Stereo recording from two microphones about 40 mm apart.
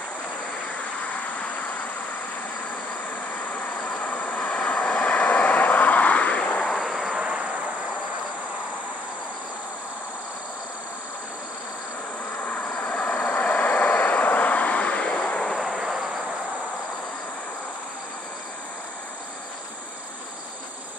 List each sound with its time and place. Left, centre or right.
1.0 s vehicle: left
3.3 s vehicle: left
6.6 s vehicle: centre
7.2 s cricket: centre
12.4 s vehicle: left
15.6 s vehicle: centre